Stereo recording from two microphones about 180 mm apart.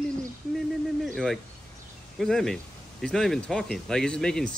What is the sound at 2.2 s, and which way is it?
Speech, centre (ahead or behind).